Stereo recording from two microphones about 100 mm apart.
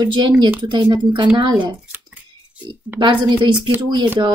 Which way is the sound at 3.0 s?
50° right (ahead or behind).